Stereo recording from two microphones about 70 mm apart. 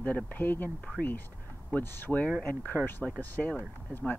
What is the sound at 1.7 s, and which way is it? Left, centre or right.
Speech, left.